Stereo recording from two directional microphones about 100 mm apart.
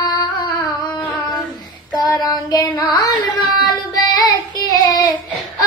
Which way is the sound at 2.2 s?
40° left (ahead or behind).